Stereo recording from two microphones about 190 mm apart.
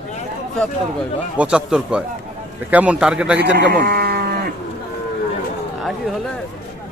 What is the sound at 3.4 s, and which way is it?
Sheep, 60° right (ahead or behind).